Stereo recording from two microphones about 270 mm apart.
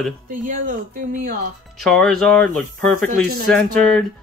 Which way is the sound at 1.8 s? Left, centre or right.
Centre.